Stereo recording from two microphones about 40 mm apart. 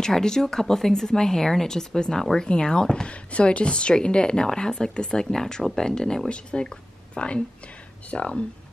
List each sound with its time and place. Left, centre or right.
0.0 s speech: centre